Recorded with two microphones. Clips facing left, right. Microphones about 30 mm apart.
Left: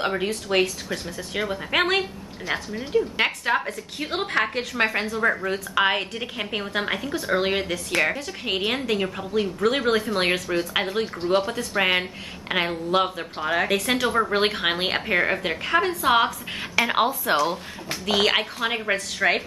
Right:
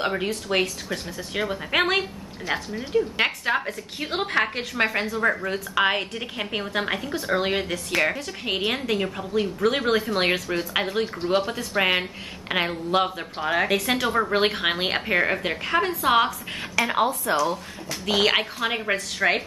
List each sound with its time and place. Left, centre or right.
0.0 s speech: centre
16.8 s a woman's voice: centre
17.2 s speech: left
18.0 s speech: centre